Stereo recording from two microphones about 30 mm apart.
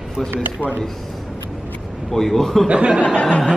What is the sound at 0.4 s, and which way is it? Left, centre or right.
Speech, right.